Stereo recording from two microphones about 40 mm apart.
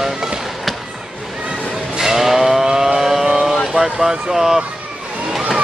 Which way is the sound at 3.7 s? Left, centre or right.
Centre.